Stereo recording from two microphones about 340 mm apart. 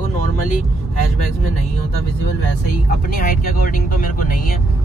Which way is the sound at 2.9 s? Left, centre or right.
Left.